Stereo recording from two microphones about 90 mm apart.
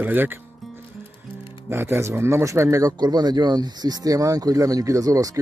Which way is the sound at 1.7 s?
30° right (ahead or behind).